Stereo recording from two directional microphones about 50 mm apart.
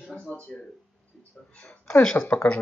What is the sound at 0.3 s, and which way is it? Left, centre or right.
Speech, left.